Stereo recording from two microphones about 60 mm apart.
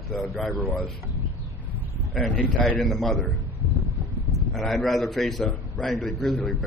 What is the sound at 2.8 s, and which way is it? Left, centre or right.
Speech, centre.